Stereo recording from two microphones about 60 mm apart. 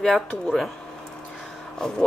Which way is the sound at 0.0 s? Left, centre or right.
Centre.